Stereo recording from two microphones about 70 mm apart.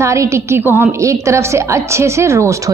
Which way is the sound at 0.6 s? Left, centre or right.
Right.